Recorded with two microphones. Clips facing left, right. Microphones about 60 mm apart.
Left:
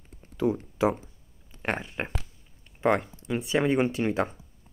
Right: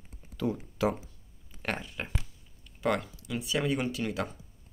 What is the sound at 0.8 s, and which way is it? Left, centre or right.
Speech, left.